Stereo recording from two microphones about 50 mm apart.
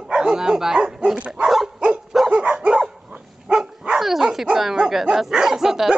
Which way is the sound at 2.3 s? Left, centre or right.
Right.